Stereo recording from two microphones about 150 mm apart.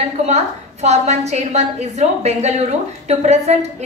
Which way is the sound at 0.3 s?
45° right (ahead or behind).